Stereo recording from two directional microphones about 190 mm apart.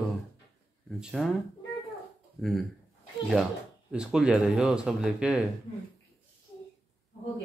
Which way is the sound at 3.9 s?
5° right (ahead or behind).